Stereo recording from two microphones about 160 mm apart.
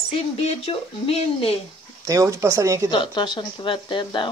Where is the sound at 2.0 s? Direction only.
20° right (ahead or behind).